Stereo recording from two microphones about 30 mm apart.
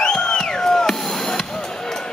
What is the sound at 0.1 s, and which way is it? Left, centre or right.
Music, left.